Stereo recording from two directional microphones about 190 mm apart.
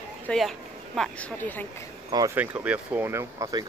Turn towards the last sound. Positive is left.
turn(degrees=-20)  # may be behind; listen again after turning